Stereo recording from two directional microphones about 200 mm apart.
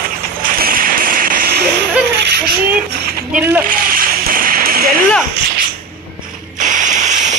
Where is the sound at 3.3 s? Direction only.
10° right (ahead or behind).